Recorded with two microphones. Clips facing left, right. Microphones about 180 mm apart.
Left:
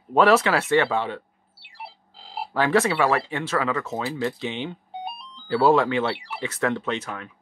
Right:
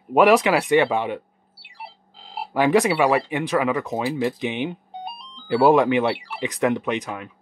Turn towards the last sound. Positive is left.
turn(degrees=-15)  # may be behind; listen again after turning